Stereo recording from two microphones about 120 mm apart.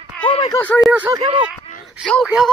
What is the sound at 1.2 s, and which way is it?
Speech, 50° right (ahead or behind).